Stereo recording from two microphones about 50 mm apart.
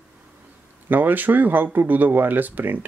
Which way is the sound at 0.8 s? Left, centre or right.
Right.